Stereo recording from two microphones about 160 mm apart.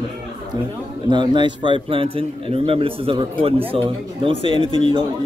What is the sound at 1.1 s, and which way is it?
A man's voice, 30° right (ahead or behind).